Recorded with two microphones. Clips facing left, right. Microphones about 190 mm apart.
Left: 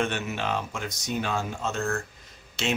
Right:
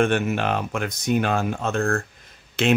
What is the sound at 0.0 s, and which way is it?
Speech, 55° right (ahead or behind).